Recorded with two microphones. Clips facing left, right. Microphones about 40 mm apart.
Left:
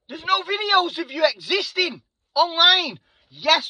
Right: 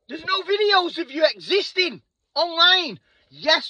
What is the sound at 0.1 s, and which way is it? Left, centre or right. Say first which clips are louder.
A man's voice: left 1 dB; left.